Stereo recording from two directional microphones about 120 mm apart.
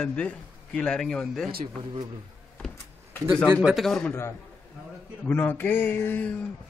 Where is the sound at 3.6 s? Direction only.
Centre (ahead or behind).